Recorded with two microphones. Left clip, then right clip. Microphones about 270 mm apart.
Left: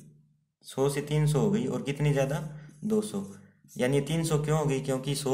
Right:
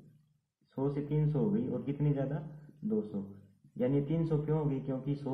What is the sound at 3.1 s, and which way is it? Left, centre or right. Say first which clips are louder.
Speech: left 6 dB; left.